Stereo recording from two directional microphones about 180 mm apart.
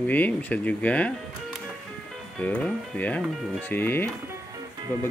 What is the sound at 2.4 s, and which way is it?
Speech, 10° left (ahead or behind).